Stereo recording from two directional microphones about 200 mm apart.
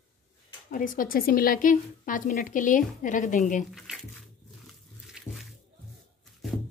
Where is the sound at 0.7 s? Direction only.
45° left (ahead or behind).